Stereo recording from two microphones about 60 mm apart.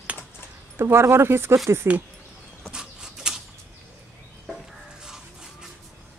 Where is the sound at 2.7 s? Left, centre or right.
Centre.